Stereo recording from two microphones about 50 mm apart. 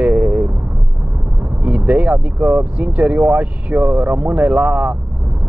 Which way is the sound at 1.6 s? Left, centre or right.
Right.